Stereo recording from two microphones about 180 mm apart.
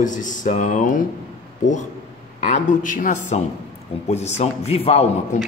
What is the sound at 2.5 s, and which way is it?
A man's voice, 45° left (ahead or behind).